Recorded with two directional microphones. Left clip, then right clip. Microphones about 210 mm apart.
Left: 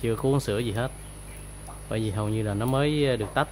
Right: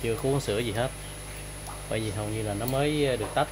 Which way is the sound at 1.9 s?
25° left (ahead or behind).